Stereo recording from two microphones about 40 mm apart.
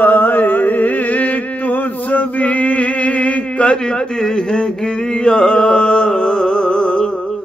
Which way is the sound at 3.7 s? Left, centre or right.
Left.